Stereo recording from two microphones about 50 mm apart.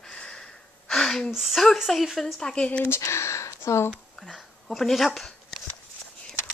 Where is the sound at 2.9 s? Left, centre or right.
Left.